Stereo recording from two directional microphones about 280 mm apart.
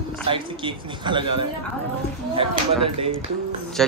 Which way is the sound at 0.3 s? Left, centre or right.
Centre.